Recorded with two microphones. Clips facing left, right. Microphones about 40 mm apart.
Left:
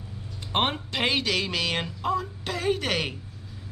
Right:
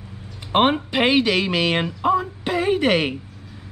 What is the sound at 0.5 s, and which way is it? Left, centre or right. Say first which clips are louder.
Speech: right 8 dB; right.